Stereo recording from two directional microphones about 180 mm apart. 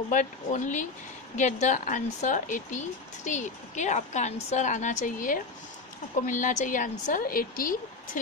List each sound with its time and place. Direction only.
0.1 s speech: 45° left (ahead or behind)